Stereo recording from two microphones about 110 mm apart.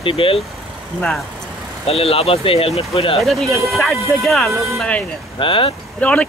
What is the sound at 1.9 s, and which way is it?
Speech, 65° left (ahead or behind).